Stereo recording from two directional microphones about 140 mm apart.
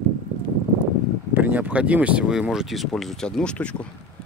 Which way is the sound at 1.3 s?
10° right (ahead or behind).